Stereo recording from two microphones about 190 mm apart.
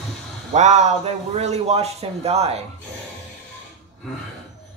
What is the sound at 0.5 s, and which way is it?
A man's voice, 40° right (ahead or behind).